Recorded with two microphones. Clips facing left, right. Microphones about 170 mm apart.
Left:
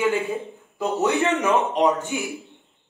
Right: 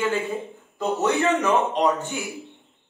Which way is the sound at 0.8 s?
Centre (ahead or behind).